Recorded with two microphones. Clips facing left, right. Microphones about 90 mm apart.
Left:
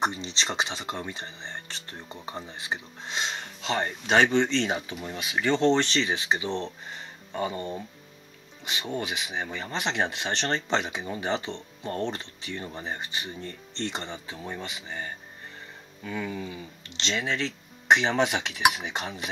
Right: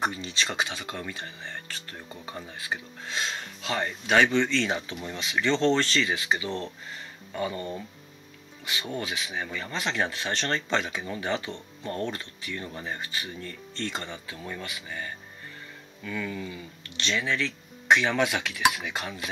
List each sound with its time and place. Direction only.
0.0 s speech: 25° left (ahead or behind)